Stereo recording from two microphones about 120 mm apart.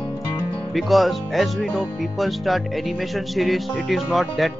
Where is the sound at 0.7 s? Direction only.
Centre (ahead or behind).